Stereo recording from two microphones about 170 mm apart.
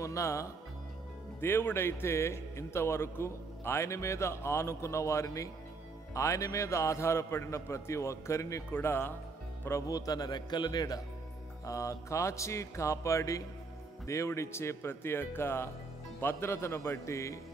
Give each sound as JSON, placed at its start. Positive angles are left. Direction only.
{"t": 0.0, "sound": "a man's voice", "side_deg": 15}